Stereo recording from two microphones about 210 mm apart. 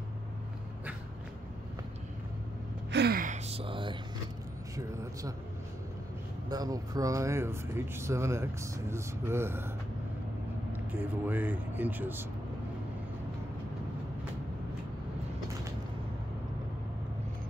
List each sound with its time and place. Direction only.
2.9 s gasp: 50° right (ahead or behind); by 3.9 s 25° right (ahead or behind)
6.5 s speech: 15° right (ahead or behind)
10.7 s speech: 10° right (ahead or behind)